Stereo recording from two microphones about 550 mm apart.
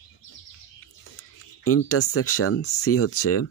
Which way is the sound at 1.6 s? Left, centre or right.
Left.